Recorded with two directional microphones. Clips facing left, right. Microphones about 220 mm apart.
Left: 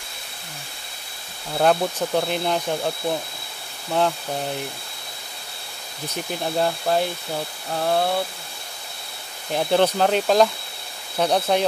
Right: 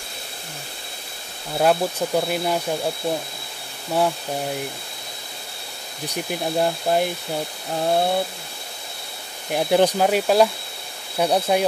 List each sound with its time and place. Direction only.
1.6 s speech: 5° right (ahead or behind)
6.0 s speech: 15° right (ahead or behind)
9.5 s speech: 10° right (ahead or behind)